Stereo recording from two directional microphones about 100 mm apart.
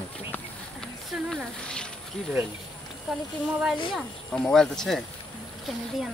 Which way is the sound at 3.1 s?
Centre (ahead or behind).